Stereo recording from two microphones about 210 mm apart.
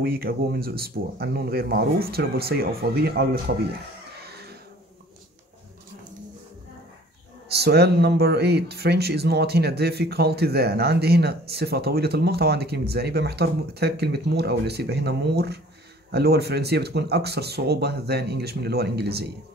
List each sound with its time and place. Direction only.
0.0 s speech: 45° right (ahead or behind)
4.3 s a sound: 50° right (ahead or behind)
7.4 s speech: 50° right (ahead or behind)